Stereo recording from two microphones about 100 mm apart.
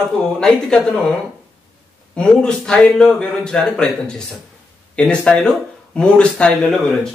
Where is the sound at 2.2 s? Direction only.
10° left (ahead or behind).